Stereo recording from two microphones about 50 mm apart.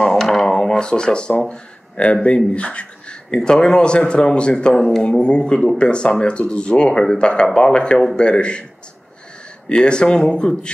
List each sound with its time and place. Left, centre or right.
0.0 s a sound: centre
0.6 s speech: centre
1.4 s a sound: centre
2.2 s speech: left
4.7 s speech: centre
5.0 s speech: centre
9.7 s speech: centre